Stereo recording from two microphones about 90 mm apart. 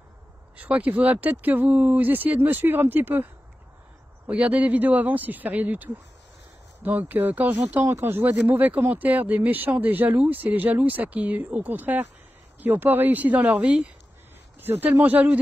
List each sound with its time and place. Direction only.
0.6 s speech: 15° right (ahead or behind)
4.3 s speech: 15° right (ahead or behind)